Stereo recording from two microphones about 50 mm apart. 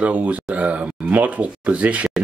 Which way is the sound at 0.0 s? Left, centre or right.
Right.